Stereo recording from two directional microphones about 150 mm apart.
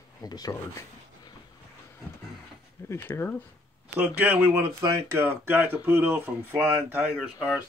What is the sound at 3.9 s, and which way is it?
Speech, 10° right (ahead or behind).